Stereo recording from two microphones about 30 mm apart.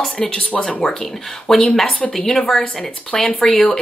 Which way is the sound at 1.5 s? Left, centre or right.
Centre.